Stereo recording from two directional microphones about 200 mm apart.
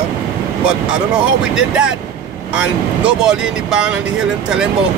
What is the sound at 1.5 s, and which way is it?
Speech, 5° right (ahead or behind).